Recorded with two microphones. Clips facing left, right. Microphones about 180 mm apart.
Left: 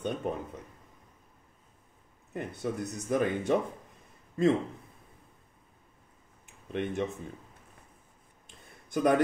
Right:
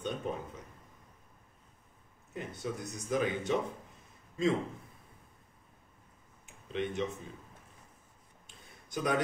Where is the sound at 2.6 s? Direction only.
55° left (ahead or behind).